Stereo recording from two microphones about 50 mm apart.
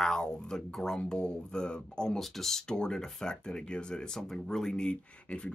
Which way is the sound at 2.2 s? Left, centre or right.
Centre.